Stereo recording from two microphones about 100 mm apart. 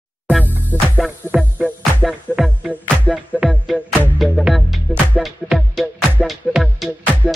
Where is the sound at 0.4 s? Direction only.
20° left (ahead or behind).